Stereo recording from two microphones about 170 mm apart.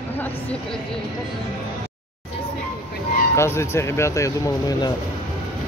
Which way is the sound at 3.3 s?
15° left (ahead or behind).